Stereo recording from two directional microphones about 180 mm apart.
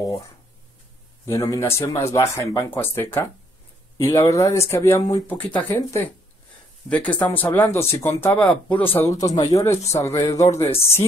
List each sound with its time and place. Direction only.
1.2 s speech: 15° left (ahead or behind)